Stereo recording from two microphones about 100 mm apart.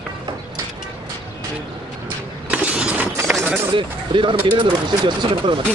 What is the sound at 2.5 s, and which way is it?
Vehicle, 15° right (ahead or behind).